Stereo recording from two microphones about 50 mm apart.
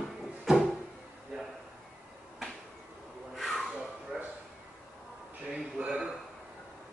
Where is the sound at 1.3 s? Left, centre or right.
Centre.